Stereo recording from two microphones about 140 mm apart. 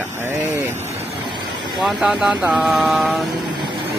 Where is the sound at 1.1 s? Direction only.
35° right (ahead or behind).